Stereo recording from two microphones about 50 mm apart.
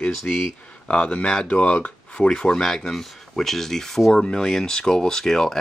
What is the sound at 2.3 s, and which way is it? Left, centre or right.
Speech, centre.